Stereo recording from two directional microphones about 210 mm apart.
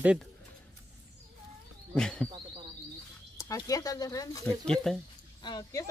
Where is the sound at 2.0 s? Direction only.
5° left (ahead or behind).